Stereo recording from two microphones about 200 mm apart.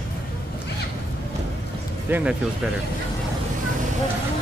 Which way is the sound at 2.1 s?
5° right (ahead or behind).